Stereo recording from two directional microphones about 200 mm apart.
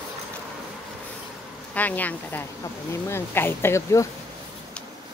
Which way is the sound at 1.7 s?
10° left (ahead or behind).